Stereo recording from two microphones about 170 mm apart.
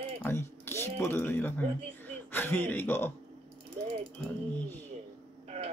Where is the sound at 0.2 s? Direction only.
15° left (ahead or behind).